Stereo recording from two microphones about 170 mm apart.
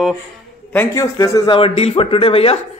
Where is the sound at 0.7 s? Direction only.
15° left (ahead or behind).